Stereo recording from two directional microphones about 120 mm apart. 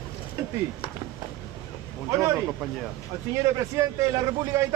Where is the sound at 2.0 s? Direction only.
25° right (ahead or behind).